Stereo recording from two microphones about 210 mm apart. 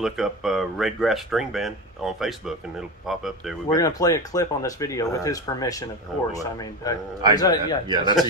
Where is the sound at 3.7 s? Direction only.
15° left (ahead or behind).